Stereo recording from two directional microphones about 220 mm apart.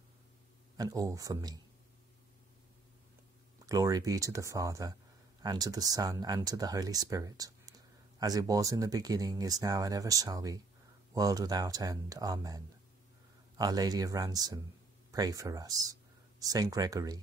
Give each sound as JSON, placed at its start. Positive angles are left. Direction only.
{"t": 0.7, "sound": "speech", "side_deg": -15}
{"t": 3.6, "sound": "speech", "side_deg": -15}